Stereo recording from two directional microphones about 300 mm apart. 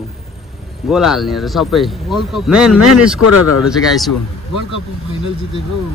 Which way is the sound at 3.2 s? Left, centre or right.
Left.